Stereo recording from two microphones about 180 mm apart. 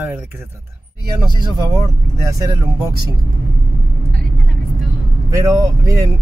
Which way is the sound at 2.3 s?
15° right (ahead or behind).